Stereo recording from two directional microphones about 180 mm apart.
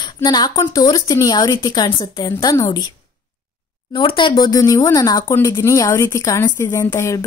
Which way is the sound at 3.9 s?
30° left (ahead or behind).